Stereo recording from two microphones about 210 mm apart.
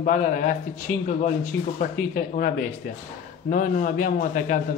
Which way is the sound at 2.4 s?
45° left (ahead or behind).